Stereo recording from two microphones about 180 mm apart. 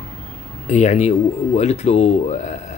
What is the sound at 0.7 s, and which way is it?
Speech, 40° left (ahead or behind).